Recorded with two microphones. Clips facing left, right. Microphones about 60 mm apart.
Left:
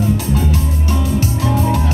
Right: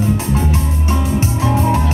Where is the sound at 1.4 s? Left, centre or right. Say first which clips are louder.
Right 2 dB; right.